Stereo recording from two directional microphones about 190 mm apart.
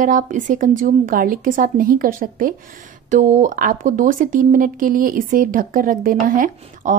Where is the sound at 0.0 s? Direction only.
40° right (ahead or behind).